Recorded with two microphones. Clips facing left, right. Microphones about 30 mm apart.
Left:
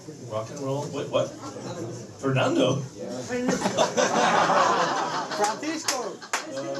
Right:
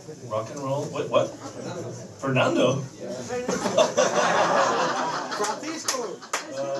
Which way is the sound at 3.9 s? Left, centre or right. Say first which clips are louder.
Even; left.